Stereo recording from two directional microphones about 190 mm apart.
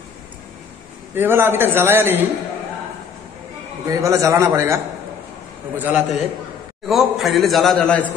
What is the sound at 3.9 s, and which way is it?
A man's voice, 15° right (ahead or behind).